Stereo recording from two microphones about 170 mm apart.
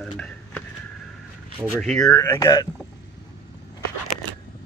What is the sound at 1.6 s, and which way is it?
Speech, 5° left (ahead or behind).